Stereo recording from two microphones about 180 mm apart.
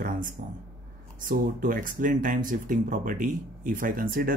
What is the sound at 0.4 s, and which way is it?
Speech, 40° right (ahead or behind).